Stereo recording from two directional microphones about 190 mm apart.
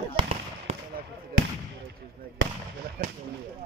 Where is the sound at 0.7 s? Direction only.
35° right (ahead or behind).